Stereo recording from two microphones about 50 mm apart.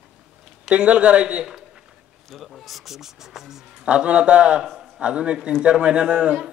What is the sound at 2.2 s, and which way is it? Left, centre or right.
Speech, centre.